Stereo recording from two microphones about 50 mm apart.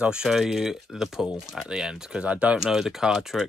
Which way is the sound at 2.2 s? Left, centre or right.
Right.